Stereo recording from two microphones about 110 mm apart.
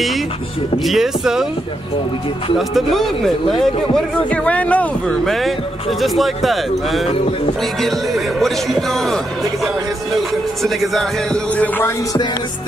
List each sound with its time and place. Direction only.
0.8 s speech: 5° right (ahead or behind)
2.7 s speech: centre (ahead or behind)
5.2 s speech: centre (ahead or behind)
7.1 s music: 60° left (ahead or behind)
7.8 s speech: centre (ahead or behind)
11.5 s music: 15° left (ahead or behind)